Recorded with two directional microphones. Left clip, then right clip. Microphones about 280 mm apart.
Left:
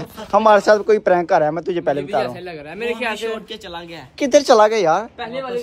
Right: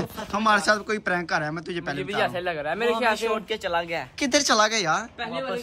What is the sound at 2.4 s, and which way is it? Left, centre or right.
A man's voice, right.